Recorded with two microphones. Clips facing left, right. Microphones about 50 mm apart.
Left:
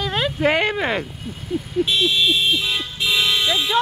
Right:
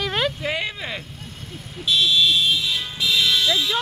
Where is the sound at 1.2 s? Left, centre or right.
Centre.